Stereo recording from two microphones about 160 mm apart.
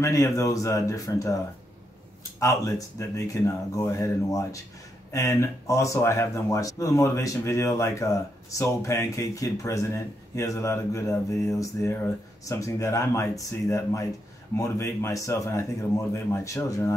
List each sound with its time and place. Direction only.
0.0 s speech: 20° left (ahead or behind)
2.4 s speech: 20° left (ahead or behind)